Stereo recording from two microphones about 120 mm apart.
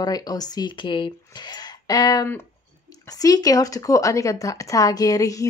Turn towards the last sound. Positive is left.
turn(degrees=30)  # may be behind; listen again after turning